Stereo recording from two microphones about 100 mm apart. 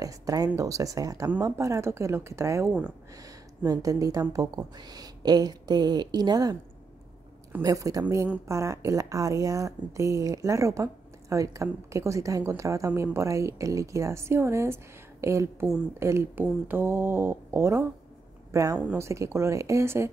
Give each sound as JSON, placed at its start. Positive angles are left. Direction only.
{"t": 0.0, "sound": "a sound", "side_deg": -35}
{"t": 0.6, "sound": "speech", "side_deg": -35}
{"t": 7.6, "sound": "speech", "side_deg": -35}